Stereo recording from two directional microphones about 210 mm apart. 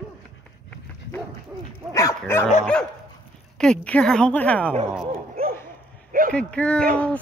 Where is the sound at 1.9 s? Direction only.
15° left (ahead or behind).